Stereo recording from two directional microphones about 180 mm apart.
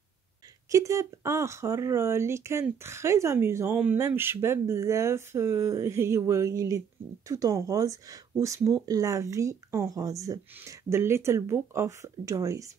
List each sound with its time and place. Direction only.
0.7 s speech: 15° right (ahead or behind)